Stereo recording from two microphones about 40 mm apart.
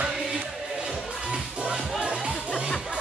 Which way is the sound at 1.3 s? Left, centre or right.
Right.